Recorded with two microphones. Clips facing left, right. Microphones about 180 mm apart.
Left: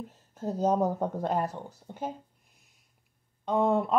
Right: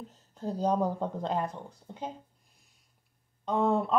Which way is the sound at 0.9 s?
10° left (ahead or behind).